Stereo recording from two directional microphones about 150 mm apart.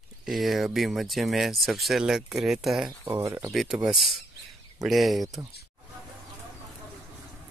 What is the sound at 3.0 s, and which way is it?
Speech, 15° right (ahead or behind).